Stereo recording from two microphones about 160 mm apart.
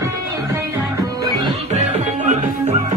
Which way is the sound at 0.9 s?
25° right (ahead or behind).